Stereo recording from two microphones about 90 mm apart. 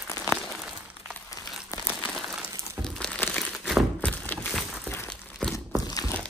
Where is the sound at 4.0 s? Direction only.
15° left (ahead or behind).